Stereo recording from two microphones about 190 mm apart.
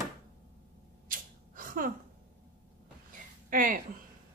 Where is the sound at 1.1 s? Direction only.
45° right (ahead or behind).